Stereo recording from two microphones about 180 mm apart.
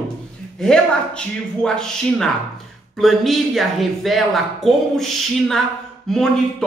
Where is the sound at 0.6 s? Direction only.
5° left (ahead or behind).